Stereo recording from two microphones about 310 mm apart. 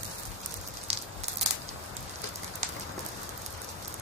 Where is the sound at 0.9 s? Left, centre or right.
Centre.